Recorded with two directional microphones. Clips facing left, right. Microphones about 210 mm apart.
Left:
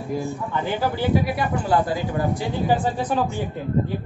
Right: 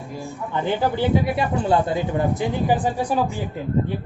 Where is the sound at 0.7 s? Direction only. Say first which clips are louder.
Right 1 dB; 25° right (ahead or behind).